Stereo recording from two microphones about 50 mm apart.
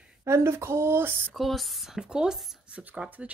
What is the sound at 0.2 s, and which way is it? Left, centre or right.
Speech, right.